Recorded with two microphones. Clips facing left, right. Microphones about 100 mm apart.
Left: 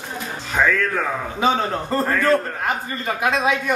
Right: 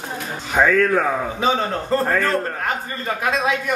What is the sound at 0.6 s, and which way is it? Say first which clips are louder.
Speech: right 2 dB; 25° right (ahead or behind).